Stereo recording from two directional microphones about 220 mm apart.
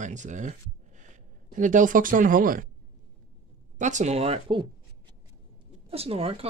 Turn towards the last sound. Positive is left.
turn(degrees=-25)  # may be behind; listen again after turning